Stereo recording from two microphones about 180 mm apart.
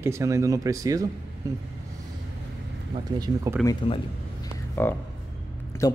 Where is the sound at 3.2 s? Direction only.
15° right (ahead or behind).